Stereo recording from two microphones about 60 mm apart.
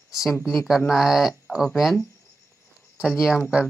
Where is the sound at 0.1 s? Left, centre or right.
Centre.